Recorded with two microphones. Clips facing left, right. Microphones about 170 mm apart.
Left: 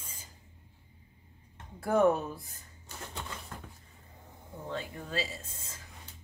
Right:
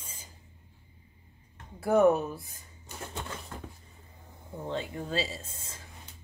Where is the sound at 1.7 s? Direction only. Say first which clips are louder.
Right 3 dB; 10° right (ahead or behind).